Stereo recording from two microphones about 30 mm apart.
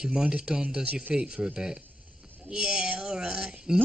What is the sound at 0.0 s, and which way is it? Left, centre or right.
Speech, right.